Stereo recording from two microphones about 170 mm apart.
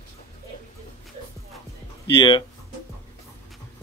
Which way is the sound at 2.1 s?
30° left (ahead or behind).